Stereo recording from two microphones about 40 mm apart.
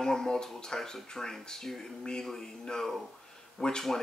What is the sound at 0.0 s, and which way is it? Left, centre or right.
Speech, centre.